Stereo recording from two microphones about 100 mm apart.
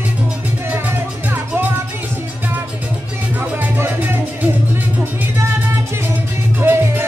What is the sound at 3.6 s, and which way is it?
Music, 25° right (ahead or behind).